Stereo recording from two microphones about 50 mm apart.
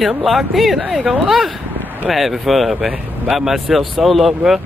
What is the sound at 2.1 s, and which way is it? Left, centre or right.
Speech, centre.